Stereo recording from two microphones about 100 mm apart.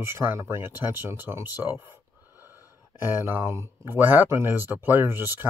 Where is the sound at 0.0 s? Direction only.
25° right (ahead or behind).